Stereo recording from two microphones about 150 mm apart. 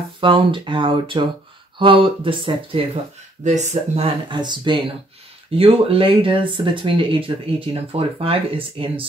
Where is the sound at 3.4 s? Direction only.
50° right (ahead or behind).